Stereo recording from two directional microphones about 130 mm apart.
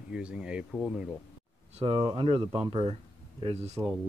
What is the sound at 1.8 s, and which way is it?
Speech, 40° right (ahead or behind).